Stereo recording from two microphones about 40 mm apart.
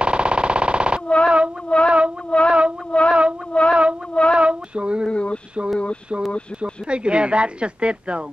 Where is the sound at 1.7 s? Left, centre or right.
Left.